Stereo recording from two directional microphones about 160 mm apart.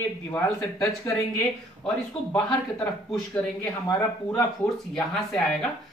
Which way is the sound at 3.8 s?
15° left (ahead or behind).